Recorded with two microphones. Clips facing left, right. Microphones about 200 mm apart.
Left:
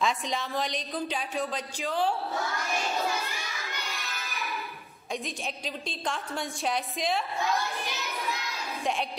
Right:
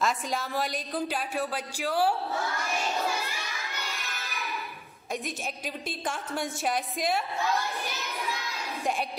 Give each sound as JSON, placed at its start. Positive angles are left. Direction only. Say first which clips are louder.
{"t": 0.0, "sound": "speech", "louder": "even", "side_deg": -5}
{"t": 5.9, "sound": "a woman's voice", "louder": "right 1 dB", "side_deg": 0}